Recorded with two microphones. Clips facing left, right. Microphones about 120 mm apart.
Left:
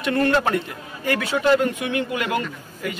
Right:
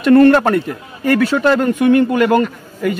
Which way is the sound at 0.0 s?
55° right (ahead or behind).